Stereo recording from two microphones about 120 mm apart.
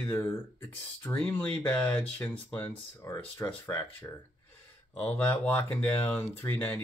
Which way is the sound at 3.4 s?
35° left (ahead or behind).